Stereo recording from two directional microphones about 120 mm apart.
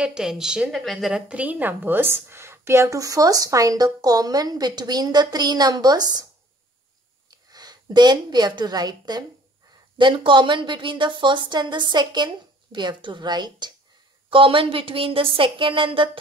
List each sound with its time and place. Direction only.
0.0 s a woman's voice: 5° right (ahead or behind); by 6.2 s 35° right (ahead or behind)
7.2 s a woman's voice: 35° right (ahead or behind)
14.3 s a woman's voice: 45° right (ahead or behind)